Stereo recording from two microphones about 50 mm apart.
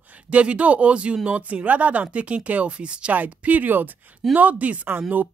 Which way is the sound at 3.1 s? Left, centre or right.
Right.